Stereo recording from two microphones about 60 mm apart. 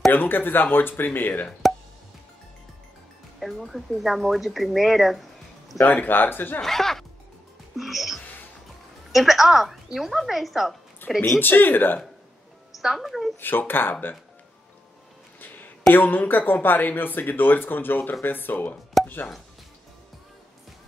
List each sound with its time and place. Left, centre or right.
0.1 s speech: left
3.3 s speech: centre
5.8 s speech: left
6.6 s speech: centre
7.7 s music: centre
9.1 s speech: centre
11.1 s speech: left
12.7 s a woman's voice: centre
13.4 s speech: left
15.4 s a sound: left
15.9 s speech: left